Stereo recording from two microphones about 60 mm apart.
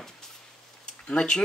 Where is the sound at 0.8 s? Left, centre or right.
Centre.